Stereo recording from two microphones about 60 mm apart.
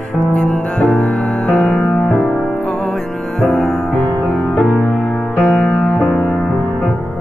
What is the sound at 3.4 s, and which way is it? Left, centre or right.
Music, centre.